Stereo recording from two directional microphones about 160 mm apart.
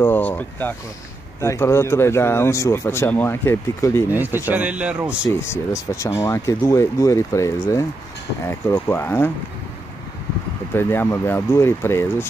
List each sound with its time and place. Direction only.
0.0 s speech: 10° left (ahead or behind)
4.1 s speech: 10° right (ahead or behind)
5.2 s speech: 15° left (ahead or behind)
10.7 s speech: 15° left (ahead or behind)